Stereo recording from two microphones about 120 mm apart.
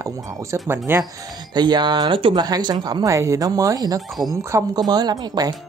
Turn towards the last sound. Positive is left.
turn(degrees=-35)  # may be behind; listen again after turning